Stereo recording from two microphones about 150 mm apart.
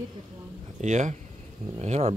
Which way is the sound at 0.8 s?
55° right (ahead or behind).